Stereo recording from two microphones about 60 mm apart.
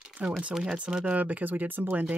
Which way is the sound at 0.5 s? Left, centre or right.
Centre.